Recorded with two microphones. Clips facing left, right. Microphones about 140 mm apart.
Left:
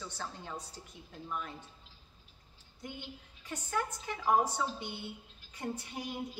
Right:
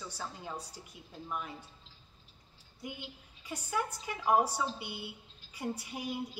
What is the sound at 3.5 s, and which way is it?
A woman's voice, 10° right (ahead or behind).